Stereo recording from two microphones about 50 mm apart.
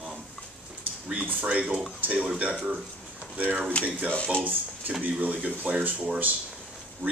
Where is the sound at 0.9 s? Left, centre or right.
Right.